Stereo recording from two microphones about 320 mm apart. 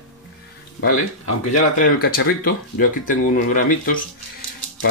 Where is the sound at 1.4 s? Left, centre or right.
Left.